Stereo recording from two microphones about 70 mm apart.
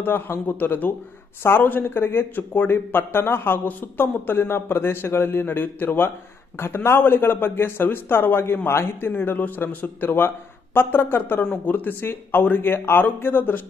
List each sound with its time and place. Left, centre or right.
0.0 s a man's voice: left